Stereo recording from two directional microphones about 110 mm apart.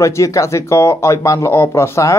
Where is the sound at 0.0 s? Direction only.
30° left (ahead or behind).